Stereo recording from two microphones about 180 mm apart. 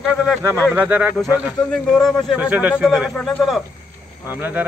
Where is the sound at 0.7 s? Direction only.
10° right (ahead or behind).